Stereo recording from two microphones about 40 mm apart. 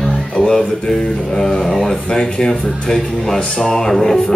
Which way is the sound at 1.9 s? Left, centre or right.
Left.